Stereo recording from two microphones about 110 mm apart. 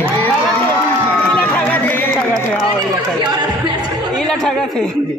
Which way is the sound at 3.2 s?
40° right (ahead or behind).